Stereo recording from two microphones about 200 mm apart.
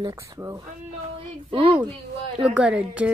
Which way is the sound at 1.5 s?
25° right (ahead or behind).